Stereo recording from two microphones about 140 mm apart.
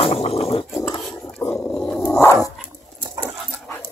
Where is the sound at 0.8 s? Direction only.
30° left (ahead or behind).